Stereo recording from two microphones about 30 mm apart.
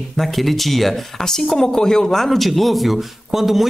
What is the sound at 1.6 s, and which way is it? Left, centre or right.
A man's voice, centre.